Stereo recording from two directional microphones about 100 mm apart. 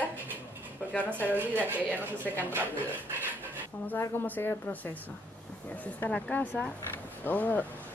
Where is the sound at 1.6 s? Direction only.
15° right (ahead or behind).